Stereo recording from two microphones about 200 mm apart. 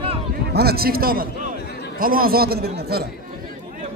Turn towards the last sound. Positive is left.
turn(degrees=-55)  # may be behind; listen again after turning